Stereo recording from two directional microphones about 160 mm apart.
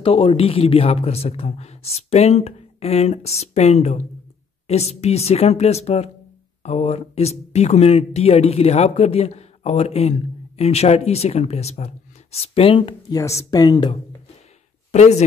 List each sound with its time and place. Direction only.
0.0 s speech: 35° left (ahead or behind)
13.2 s speech: 20° left (ahead or behind)
14.9 s speech: 45° left (ahead or behind)